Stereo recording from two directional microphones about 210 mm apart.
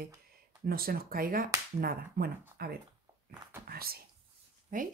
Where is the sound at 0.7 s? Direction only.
45° right (ahead or behind).